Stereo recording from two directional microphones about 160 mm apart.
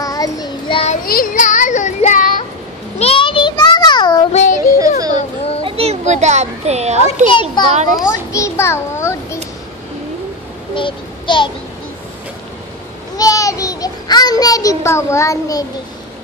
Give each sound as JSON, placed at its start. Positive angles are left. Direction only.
{"t": 0.0, "sound": "child singing", "side_deg": 20}
{"t": 1.0, "sound": "child singing", "side_deg": 60}
{"t": 3.0, "sound": "a sound", "side_deg": 35}
{"t": 4.3, "sound": "child singing", "side_deg": 50}
{"t": 4.7, "sound": "children playing", "side_deg": -20}
{"t": 5.1, "sound": "children playing", "side_deg": 40}
{"t": 5.7, "sound": "children playing", "side_deg": -40}
{"t": 7.2, "sound": "a child's voice", "side_deg": 30}
{"t": 8.3, "sound": "a sound", "side_deg": 15}
{"t": 10.7, "sound": "child singing", "side_deg": 30}
{"t": 13.2, "sound": "a child's voice", "side_deg": 20}